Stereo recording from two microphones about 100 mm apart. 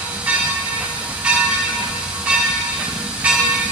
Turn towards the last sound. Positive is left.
turn(degrees=-10)  # may be behind; listen again after turning